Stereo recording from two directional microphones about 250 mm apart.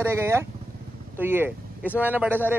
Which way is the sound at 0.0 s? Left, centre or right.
Centre.